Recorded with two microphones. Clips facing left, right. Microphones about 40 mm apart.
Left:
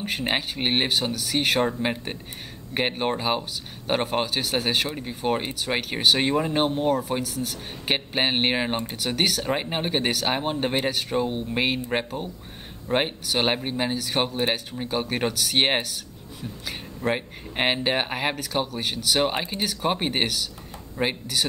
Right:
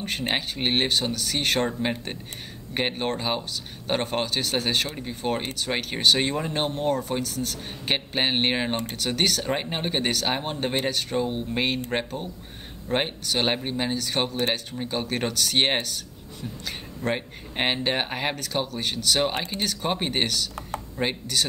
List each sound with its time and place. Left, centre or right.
0.0 s speech: centre